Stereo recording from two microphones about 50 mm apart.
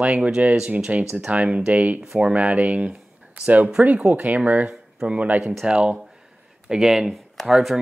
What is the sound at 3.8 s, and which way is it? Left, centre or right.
Speech, right.